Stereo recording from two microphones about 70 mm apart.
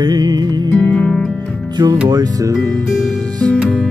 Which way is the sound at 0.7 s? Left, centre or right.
Left.